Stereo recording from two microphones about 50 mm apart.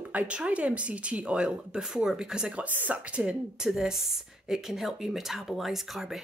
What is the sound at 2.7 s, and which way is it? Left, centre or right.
Speech, right.